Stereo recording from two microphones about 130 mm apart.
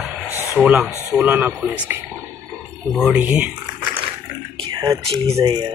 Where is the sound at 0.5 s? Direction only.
Centre (ahead or behind).